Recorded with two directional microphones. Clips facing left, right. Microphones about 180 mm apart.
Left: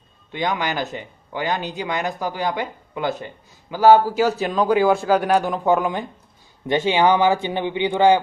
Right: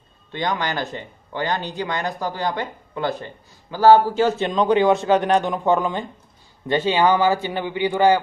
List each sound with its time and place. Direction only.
0.3 s speech: 10° left (ahead or behind)
4.3 s a man's voice: 5° left (ahead or behind); by 8.2 s 20° left (ahead or behind)